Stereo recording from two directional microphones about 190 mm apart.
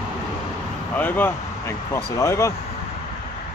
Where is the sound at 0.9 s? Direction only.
10° left (ahead or behind).